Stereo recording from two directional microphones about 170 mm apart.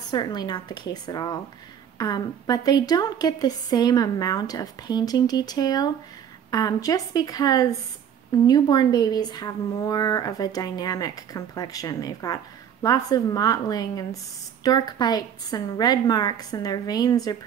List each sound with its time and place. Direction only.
0.1 s a woman's voice: 25° left (ahead or behind)